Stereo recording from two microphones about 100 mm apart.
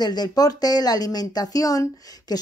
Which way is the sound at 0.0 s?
45° left (ahead or behind).